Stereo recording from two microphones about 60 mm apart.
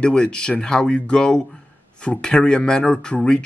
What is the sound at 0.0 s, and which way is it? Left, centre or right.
Speech, centre.